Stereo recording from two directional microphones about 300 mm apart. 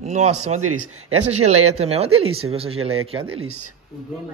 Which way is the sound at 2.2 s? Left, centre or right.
Right.